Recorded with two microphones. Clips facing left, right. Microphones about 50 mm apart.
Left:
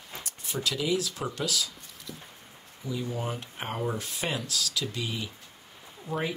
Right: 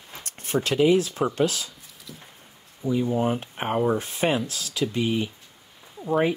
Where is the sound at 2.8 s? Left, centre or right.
Right.